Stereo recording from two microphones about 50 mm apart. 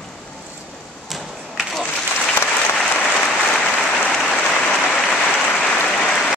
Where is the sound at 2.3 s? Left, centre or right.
Left.